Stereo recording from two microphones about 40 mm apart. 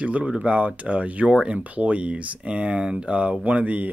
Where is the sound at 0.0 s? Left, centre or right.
Right.